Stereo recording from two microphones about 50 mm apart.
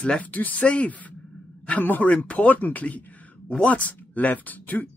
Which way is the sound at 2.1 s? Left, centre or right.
Left.